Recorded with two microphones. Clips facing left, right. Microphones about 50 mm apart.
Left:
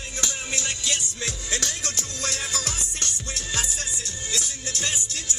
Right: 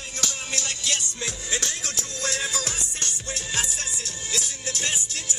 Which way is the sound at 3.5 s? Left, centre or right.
Right.